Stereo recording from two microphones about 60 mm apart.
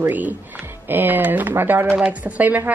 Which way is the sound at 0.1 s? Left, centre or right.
Right.